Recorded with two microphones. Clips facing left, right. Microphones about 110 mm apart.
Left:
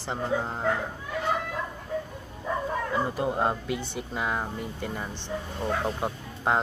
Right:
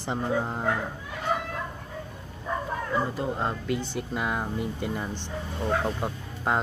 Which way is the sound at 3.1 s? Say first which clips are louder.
Left 3 dB; 15° left (ahead or behind).